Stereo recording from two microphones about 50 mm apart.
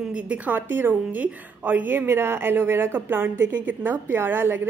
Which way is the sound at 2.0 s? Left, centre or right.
Right.